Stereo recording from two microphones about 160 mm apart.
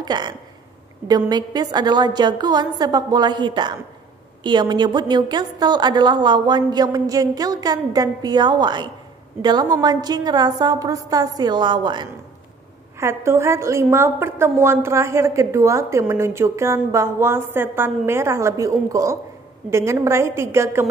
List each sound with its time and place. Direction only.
0.0 s speech: 25° right (ahead or behind)
1.3 s a woman's voice: 25° right (ahead or behind)
13.0 s a woman's voice: 15° right (ahead or behind)